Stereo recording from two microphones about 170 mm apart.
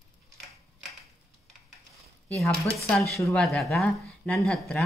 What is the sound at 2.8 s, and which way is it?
Speech, 5° left (ahead or behind).